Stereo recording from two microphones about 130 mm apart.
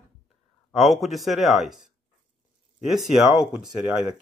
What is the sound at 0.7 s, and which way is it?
Speech, centre (ahead or behind).